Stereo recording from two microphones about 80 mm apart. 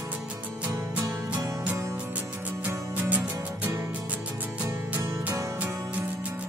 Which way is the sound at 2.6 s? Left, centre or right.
Centre.